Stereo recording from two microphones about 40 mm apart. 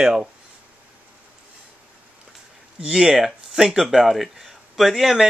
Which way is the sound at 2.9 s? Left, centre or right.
Centre.